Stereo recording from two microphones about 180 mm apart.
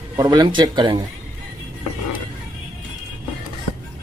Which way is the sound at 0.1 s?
20° right (ahead or behind).